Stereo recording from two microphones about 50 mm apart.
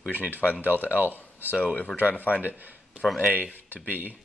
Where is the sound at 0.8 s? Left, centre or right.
Right.